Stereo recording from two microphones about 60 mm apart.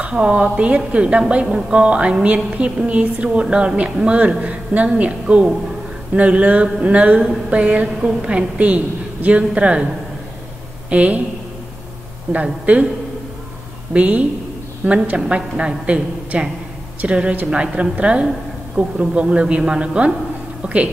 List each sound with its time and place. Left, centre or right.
0.0 s a woman's voice: centre
10.9 s speech: right
12.3 s speech: right
13.9 s a woman's voice: right